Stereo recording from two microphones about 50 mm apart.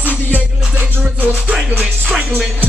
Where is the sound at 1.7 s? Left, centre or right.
Right.